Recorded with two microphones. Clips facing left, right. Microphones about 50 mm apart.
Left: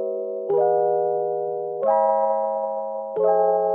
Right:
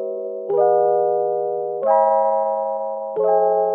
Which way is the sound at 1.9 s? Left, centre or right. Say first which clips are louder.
Right 4 dB; right.